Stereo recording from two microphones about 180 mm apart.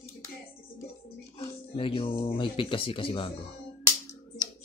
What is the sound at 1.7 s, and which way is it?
Speech, 30° left (ahead or behind).